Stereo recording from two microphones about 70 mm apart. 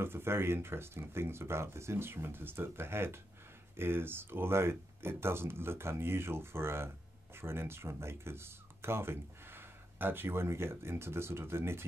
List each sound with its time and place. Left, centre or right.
0.0 s speech: right